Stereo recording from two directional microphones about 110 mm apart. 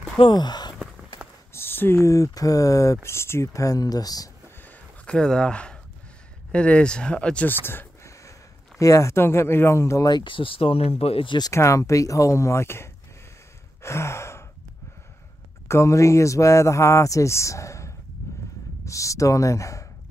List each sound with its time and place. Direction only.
0.2 s speech: 40° left (ahead or behind)
1.5 s speech: 20° left (ahead or behind)
4.6 s a sound: 10° left (ahead or behind)
6.5 s speech: 10° left (ahead or behind); by 10.0 s 25° left (ahead or behind)
10.0 s speech: 45° left (ahead or behind); by 11.3 s 60° left (ahead or behind)
11.5 s speech: 30° left (ahead or behind)
13.8 s sigh: 25° left (ahead or behind)
15.7 s speech: 25° left (ahead or behind)
18.2 s a sound: 25° left (ahead or behind)
18.9 s speech: 30° left (ahead or behind)